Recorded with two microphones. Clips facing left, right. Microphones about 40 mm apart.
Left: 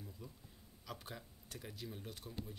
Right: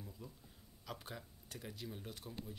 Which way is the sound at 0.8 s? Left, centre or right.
Centre.